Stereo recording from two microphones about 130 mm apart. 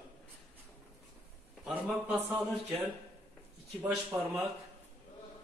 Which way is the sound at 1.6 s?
5° right (ahead or behind).